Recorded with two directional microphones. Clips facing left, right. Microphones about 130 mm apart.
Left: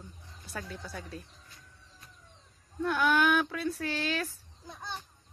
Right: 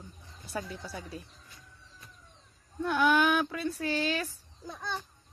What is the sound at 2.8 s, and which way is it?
Speech, centre (ahead or behind).